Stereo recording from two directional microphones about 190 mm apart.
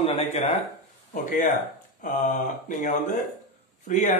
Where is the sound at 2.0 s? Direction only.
45° left (ahead or behind).